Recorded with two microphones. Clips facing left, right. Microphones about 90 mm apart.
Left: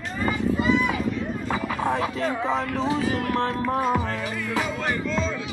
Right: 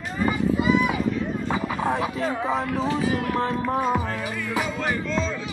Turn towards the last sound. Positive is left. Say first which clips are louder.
# even
turn(degrees=0)  # may be behind; listen again after turning